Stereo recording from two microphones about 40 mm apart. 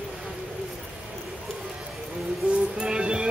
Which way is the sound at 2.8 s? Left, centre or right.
Right.